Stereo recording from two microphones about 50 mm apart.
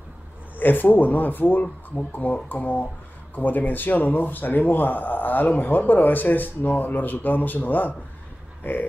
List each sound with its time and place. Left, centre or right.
0.6 s speech: left